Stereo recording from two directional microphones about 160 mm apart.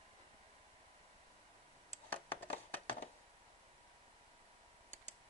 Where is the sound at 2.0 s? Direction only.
10° left (ahead or behind).